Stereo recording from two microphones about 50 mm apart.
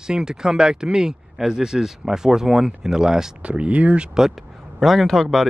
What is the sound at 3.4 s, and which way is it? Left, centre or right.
Speech, right.